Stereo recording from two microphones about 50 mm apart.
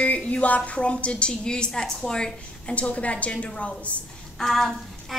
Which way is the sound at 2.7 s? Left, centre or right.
Left.